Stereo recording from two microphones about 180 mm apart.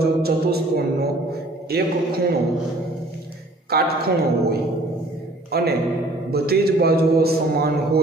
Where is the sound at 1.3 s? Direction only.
60° right (ahead or behind).